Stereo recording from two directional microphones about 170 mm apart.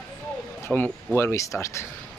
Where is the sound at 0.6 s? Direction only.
10° left (ahead or behind).